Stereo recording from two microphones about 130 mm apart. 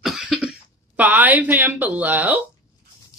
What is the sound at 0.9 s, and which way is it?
Speech, 10° right (ahead or behind).